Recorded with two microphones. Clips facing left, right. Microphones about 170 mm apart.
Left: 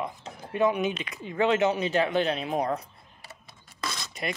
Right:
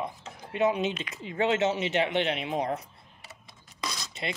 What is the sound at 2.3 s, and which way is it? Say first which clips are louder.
Speech: left 2 dB; 35° left (ahead or behind).